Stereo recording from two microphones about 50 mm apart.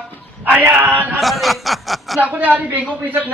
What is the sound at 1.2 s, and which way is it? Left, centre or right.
Chuckle, centre.